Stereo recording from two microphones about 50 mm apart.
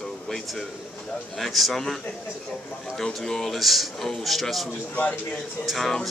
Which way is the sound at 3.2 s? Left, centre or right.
Centre.